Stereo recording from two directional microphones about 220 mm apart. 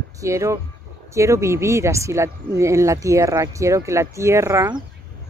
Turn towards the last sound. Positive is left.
turn(degrees=-15)  # may be behind; listen again after turning